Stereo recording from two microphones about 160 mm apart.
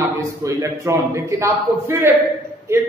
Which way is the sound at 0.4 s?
20° right (ahead or behind).